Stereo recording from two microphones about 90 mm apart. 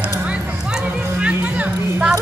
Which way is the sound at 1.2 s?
15° right (ahead or behind).